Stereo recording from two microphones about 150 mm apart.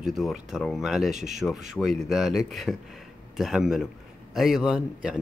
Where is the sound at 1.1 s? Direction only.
50° right (ahead or behind).